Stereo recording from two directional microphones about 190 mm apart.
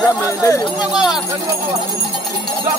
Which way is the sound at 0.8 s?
5° right (ahead or behind).